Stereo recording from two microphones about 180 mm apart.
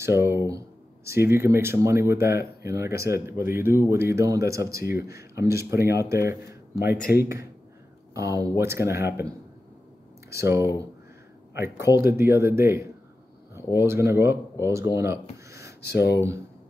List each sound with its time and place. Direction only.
0.0 s speech: 15° right (ahead or behind)
6.9 s speech: 60° left (ahead or behind)
8.1 s speech: 20° right (ahead or behind)
15.8 s speech: 65° left (ahead or behind)